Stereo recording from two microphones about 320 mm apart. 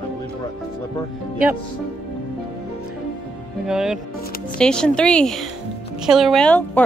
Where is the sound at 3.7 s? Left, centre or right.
Centre.